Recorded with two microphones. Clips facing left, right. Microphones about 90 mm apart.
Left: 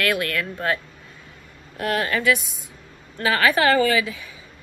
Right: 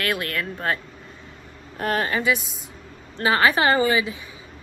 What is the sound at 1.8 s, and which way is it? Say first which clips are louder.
Speech: even; 35° right (ahead or behind).